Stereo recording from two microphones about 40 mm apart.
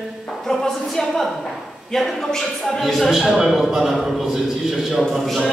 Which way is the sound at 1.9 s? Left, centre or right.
Centre.